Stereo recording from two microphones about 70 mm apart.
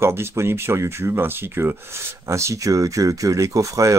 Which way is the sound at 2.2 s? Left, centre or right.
Right.